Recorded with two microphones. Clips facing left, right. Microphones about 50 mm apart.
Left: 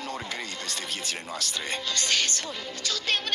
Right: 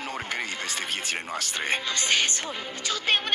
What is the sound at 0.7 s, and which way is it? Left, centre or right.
Speech, centre.